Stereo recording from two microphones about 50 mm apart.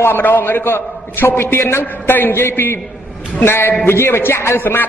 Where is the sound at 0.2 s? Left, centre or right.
Left.